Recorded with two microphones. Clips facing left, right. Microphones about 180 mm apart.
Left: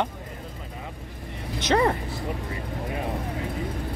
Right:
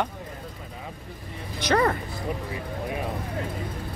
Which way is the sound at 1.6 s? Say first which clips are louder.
Left 1 dB; 25° left (ahead or behind).